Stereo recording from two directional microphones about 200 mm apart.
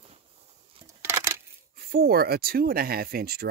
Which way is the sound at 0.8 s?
15° right (ahead or behind).